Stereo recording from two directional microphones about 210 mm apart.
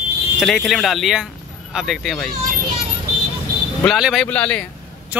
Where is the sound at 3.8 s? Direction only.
Centre (ahead or behind).